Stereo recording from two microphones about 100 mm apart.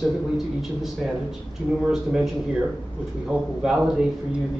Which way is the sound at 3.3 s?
10° right (ahead or behind).